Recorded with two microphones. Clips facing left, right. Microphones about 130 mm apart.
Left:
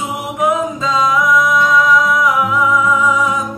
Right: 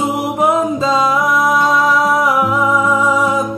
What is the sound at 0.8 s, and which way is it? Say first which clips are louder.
Music: right 1 dB; 35° right (ahead or behind).